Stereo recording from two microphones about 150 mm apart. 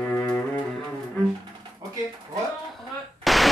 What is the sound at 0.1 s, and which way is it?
Music, 15° left (ahead or behind).